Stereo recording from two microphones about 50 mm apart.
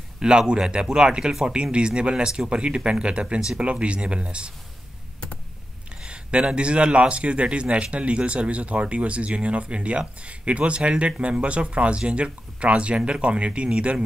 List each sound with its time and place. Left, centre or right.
0.2 s a man's voice: centre
6.0 s a man's voice: right